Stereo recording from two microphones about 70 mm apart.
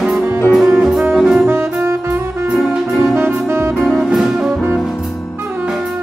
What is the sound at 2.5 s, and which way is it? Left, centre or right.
Music, centre.